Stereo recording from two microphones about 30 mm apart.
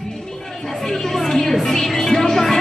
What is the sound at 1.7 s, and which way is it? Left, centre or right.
Music, centre.